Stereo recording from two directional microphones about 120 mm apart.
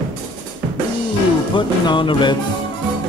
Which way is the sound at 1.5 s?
45° left (ahead or behind).